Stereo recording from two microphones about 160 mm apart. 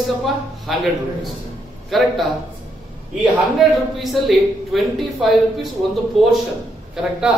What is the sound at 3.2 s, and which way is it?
A man's voice, centre (ahead or behind).